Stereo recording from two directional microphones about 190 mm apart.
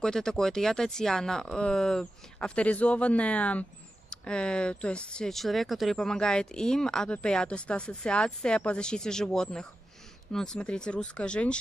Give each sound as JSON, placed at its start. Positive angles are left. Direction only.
{"t": 0.0, "sound": "speech", "side_deg": 5}